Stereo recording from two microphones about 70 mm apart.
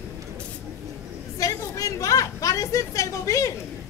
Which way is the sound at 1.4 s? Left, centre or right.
Left.